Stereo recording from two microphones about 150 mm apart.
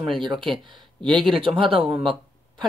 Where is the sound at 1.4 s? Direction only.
35° right (ahead or behind).